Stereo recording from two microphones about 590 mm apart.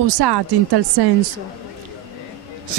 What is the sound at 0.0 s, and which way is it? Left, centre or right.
Speech, right.